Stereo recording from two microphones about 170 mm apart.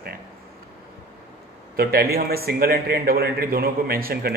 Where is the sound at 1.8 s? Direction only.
65° right (ahead or behind).